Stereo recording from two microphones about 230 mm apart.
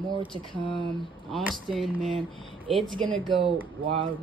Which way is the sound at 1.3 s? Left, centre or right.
Centre.